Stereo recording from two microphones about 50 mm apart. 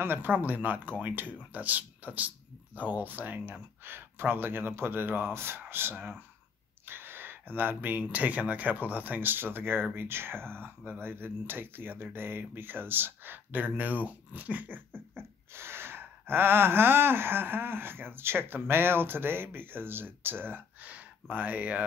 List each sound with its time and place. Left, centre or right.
0.0 s speech: right
5.3 s speech: right
5.7 s gasp: right
6.9 s speech: right
9.9 s gasp: right
15.1 s gasp: right
20.8 s speech: right